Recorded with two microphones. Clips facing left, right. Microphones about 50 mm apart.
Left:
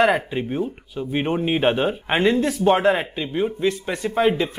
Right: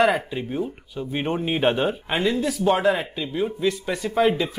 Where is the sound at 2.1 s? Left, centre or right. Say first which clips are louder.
Left 4 dB; left.